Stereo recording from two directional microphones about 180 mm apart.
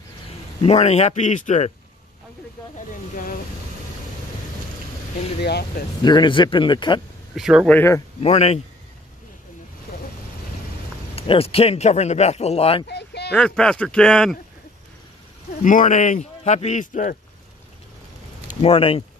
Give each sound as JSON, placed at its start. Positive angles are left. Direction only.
{"t": 0.6, "sound": "speech", "side_deg": 35}
{"t": 2.9, "sound": "speech", "side_deg": 50}
{"t": 5.4, "sound": "speech", "side_deg": 65}
{"t": 6.0, "sound": "speech", "side_deg": 25}
{"t": 7.3, "sound": "speech", "side_deg": 0}
{"t": 7.7, "sound": "speech", "side_deg": 15}
{"t": 8.2, "sound": "speech", "side_deg": 35}
{"t": 11.1, "sound": "speech", "side_deg": 30}
{"t": 12.8, "sound": "a sound", "side_deg": 65}
{"t": 13.3, "sound": "speech", "side_deg": 5}
{"t": 15.6, "sound": "speech", "side_deg": 45}
{"t": 18.5, "sound": "speech", "side_deg": 30}